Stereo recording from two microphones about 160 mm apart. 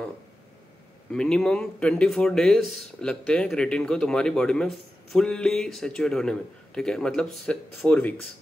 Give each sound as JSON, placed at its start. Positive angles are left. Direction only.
{"t": 1.1, "sound": "speech", "side_deg": 5}